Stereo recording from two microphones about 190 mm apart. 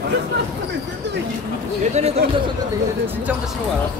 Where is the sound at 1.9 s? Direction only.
35° right (ahead or behind).